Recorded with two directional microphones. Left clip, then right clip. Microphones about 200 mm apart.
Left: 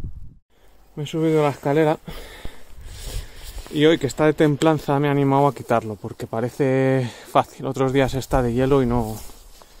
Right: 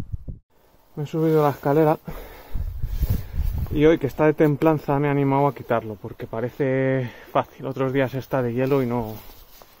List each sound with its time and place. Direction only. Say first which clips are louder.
0.9 s speech: even; 10° left (ahead or behind)
1.7 s speech: even; centre (ahead or behind)
3.7 s speech: left 1 dB; 10° left (ahead or behind); by 9.2 s 40° left (ahead or behind)